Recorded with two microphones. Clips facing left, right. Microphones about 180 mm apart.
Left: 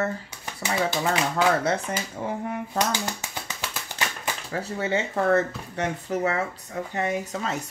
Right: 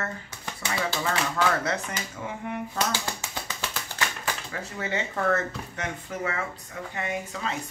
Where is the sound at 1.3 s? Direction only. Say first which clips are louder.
Left 4 dB; 30° left (ahead or behind).